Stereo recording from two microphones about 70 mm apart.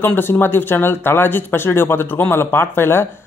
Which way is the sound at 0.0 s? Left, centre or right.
Left.